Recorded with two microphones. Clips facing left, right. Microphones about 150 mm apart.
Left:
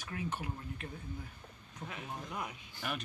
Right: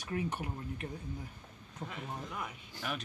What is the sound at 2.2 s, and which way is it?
Speech, 15° left (ahead or behind).